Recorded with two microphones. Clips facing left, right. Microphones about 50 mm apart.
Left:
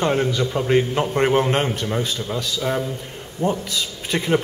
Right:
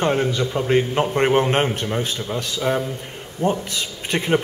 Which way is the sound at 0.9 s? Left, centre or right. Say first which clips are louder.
Right 1 dB; centre.